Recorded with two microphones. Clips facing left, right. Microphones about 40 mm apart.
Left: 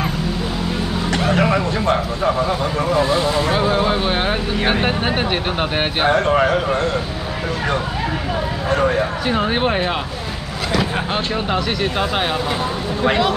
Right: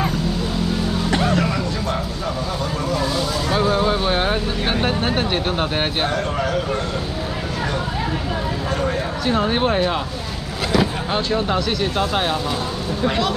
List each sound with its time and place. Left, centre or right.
1.3 s a sound: left
2.9 s speech: left
3.5 s speech: centre
6.0 s speech: left
8.8 s speech: centre
11.3 s speech: centre